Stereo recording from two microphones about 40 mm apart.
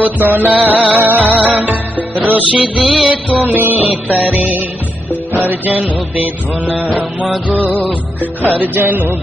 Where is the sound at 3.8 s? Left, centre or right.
Right.